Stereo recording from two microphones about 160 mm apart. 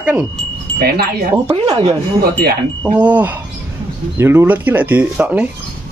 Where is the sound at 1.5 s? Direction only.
35° right (ahead or behind).